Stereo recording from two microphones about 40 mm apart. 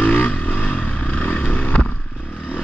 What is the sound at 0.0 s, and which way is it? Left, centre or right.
Vehicle, left.